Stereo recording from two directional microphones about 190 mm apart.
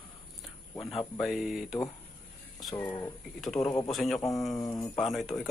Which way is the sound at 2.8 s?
15° left (ahead or behind).